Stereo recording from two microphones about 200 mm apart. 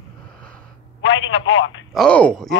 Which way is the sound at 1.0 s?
65° left (ahead or behind).